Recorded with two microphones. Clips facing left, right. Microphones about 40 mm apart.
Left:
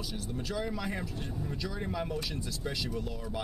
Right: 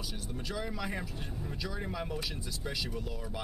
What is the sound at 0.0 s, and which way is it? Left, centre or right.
Speech, centre.